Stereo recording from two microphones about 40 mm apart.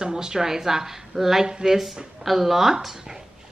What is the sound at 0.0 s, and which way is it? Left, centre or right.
Speech, centre.